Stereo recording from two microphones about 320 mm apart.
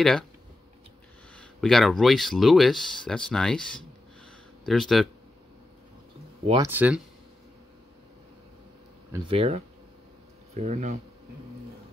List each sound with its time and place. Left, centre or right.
1.3 s speech: centre
6.4 s speech: centre
6.7 s speech: centre
9.1 s speech: centre